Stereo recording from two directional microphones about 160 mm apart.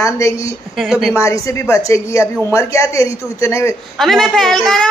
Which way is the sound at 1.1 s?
15° left (ahead or behind).